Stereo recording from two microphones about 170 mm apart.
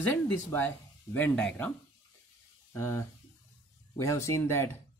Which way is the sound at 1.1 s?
10° left (ahead or behind).